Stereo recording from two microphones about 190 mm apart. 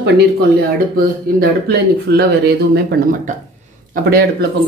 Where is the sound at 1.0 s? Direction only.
55° right (ahead or behind).